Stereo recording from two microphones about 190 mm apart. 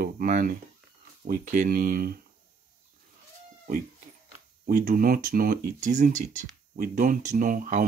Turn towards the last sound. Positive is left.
turn(degrees=-45)  # may be behind; listen again after turning